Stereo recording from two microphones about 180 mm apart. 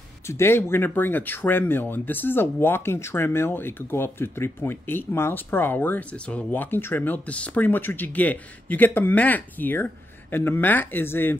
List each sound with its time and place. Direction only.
0.3 s speech: 15° left (ahead or behind)